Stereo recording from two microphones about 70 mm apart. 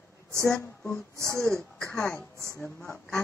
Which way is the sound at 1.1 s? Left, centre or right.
Right.